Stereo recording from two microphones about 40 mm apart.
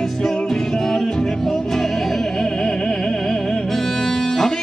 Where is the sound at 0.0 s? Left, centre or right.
Centre.